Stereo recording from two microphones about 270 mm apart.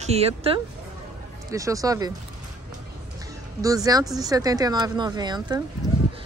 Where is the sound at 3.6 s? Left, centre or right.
Centre.